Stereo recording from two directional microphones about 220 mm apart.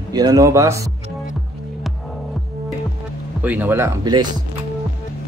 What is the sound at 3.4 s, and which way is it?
Speech, 10° right (ahead or behind).